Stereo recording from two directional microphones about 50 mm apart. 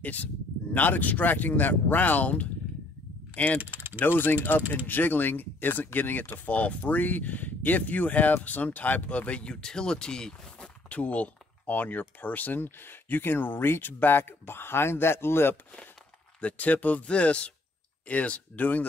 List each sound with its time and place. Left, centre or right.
0.0 s speech: left
3.6 s typing: right
4.0 s speech: left
9.5 s speech: centre
10.9 s speech: left
16.3 s speech: left